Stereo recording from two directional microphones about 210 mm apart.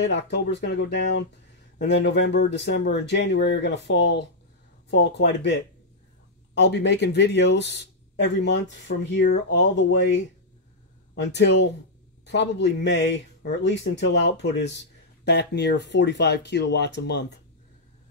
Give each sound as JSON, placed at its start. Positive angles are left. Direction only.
{"t": 0.0, "sound": "speech", "side_deg": 55}